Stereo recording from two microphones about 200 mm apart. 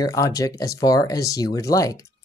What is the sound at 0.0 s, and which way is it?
Speech, 15° left (ahead or behind).